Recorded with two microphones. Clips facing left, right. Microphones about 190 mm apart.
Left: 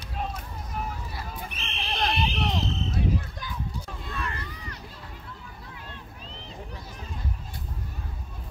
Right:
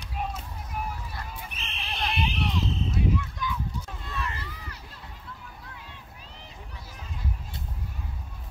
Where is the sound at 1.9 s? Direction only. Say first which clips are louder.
Left 3 dB; 40° left (ahead or behind).